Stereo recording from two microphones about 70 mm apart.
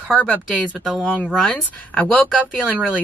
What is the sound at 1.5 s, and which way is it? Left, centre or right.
Speech, left.